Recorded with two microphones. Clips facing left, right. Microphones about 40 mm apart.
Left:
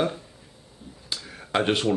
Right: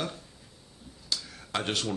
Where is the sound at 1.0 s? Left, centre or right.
Left.